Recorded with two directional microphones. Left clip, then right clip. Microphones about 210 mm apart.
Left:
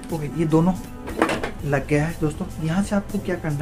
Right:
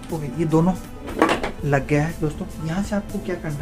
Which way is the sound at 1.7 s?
10° right (ahead or behind).